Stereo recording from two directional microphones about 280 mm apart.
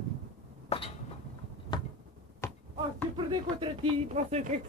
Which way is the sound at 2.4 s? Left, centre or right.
Centre.